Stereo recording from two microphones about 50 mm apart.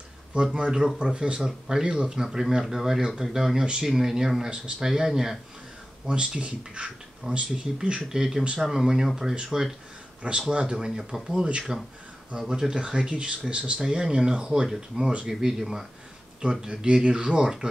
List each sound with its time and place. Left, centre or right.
0.3 s speech: centre
2.2 s speech: centre